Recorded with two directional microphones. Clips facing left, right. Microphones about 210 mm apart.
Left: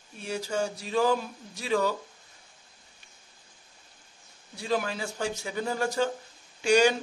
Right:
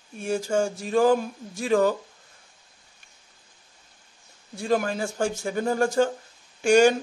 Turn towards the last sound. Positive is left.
turn(degrees=-50)  # may be behind; listen again after turning